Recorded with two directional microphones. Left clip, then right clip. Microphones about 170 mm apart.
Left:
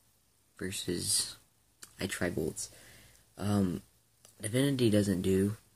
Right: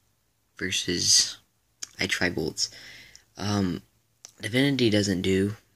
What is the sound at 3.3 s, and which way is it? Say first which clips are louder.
Speech: right 5 dB; 25° right (ahead or behind).